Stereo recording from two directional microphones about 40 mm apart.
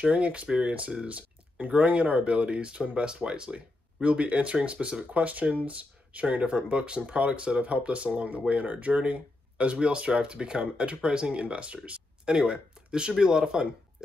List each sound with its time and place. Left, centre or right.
0.0 s speech: right